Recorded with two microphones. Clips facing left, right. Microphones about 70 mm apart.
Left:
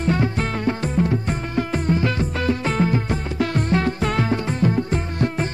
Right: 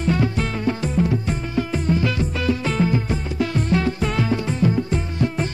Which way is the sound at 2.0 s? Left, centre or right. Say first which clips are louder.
Even; left.